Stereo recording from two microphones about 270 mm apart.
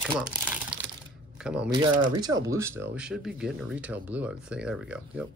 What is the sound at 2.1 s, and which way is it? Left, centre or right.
Speech, centre.